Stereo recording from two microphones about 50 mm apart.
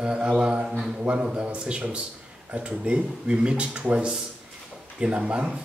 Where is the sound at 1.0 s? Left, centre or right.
Right.